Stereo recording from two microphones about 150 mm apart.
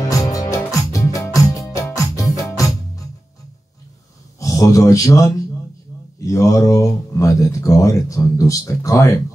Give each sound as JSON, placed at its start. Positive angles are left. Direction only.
{"t": 0.0, "sound": "music", "side_deg": 20}
{"t": 4.4, "sound": "speech", "side_deg": 20}